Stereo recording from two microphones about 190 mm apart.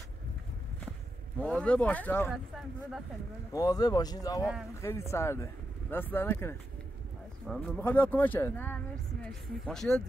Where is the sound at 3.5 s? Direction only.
20° left (ahead or behind).